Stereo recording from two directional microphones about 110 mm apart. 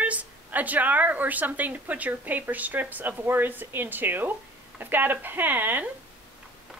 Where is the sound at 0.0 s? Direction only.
15° right (ahead or behind).